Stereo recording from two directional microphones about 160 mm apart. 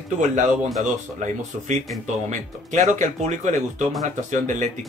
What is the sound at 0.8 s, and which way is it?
Speech, 50° right (ahead or behind).